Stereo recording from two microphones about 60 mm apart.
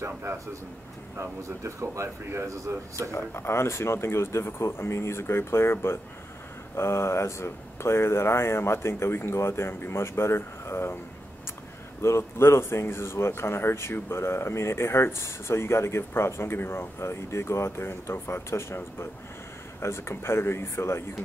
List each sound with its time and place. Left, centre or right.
0.0 s a man's voice: right
3.1 s speech: left
12.0 s speech: left